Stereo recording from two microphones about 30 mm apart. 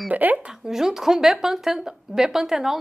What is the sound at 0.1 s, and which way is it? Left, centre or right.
Speech, right.